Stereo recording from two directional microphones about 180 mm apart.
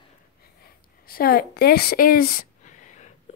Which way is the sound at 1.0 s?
55° left (ahead or behind).